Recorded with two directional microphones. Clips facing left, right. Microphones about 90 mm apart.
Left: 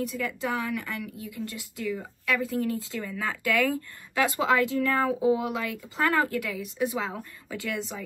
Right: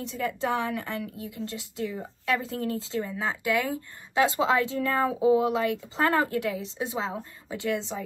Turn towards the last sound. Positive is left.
turn(degrees=-25)  # may be behind; listen again after turning